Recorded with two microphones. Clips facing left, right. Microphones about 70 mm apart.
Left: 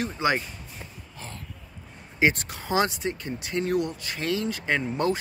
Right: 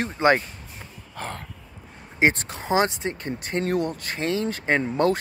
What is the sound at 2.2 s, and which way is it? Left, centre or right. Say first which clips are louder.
Speech: right 2 dB; right.